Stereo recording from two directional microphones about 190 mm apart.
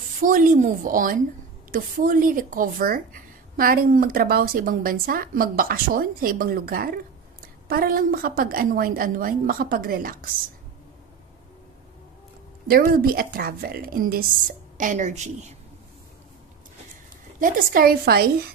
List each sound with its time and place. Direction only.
0.2 s speech: 45° right (ahead or behind)
12.6 s a woman's voice: 50° right (ahead or behind)
17.4 s speech: 50° right (ahead or behind)